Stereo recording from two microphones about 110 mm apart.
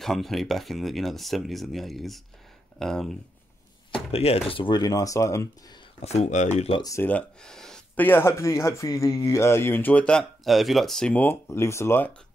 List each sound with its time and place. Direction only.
0.0 s speech: centre (ahead or behind)
4.1 s speech: 65° left (ahead or behind); by 5.5 s 30° left (ahead or behind)
5.9 s speech: 80° left
7.0 s speech: 15° left (ahead or behind)
7.9 s speech: 15° left (ahead or behind)
11.4 s speech: 25° left (ahead or behind)